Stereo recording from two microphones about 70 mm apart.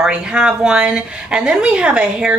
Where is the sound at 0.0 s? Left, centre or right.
Centre.